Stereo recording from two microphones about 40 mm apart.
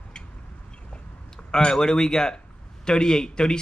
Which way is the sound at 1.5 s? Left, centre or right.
Centre.